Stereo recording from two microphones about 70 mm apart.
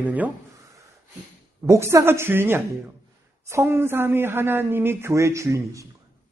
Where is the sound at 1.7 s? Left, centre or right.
Right.